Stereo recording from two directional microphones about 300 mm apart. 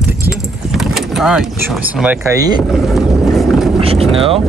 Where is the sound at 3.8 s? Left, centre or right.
Centre.